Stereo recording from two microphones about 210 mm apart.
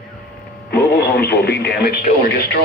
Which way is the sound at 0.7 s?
50° left (ahead or behind).